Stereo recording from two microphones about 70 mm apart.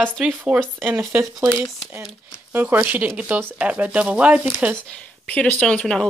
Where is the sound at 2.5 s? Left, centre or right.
Right.